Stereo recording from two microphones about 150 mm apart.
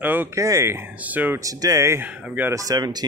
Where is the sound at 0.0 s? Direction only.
15° right (ahead or behind).